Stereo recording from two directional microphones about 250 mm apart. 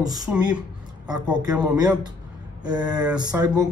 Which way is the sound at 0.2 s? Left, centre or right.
Centre.